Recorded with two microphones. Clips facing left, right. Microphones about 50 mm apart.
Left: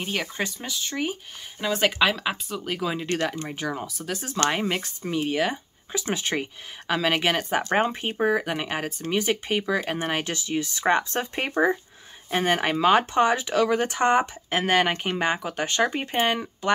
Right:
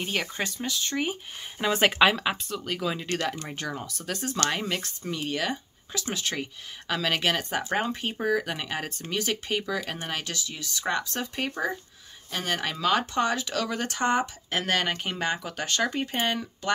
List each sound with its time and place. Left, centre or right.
0.0 s speech: centre
1.6 s speech: centre
2.4 s speech: centre
4.5 s speech: centre